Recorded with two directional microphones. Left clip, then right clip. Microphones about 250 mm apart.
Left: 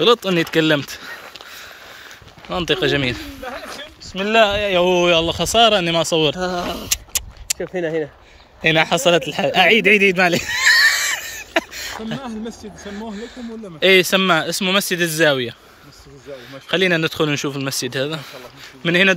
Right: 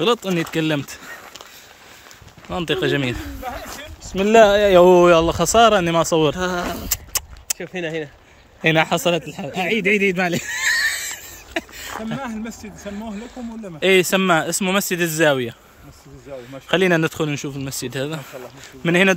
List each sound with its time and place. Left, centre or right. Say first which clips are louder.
0.0 s speech: left 4 dB; centre
2.5 s speech: left 2 dB; centre
3.6 s speech: left 2 dB; right
6.5 s speech: left 1 dB; centre
6.9 s a sound: left 3 dB; right
7.5 s speech: left 4 dB; left
8.6 s speech: left 2 dB; centre
9.3 s a sound: left 9 dB; centre
12.8 s speech: left 1 dB; centre
16.6 s speech: even; centre